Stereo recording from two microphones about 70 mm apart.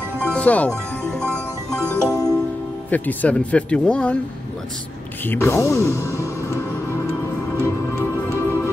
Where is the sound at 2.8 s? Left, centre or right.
Left.